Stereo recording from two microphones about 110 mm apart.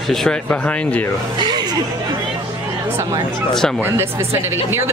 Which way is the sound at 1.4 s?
40° right (ahead or behind).